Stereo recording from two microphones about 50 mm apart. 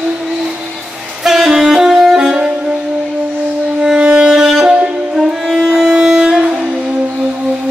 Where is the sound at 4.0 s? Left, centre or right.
Centre.